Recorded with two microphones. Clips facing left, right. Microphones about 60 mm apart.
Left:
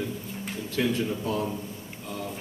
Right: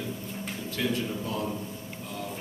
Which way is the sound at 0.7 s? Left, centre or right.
Left.